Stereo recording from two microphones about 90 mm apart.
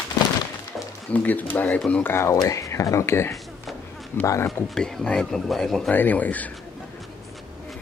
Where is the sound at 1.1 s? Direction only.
20° left (ahead or behind).